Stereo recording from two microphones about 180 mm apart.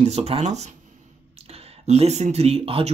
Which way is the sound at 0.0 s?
35° right (ahead or behind).